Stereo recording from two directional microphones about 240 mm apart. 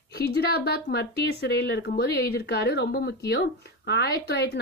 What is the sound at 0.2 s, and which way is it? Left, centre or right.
Speech, left.